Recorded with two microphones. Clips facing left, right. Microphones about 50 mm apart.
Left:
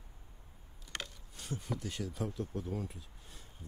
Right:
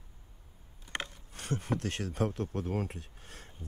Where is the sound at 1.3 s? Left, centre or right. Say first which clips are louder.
Right 6 dB; right.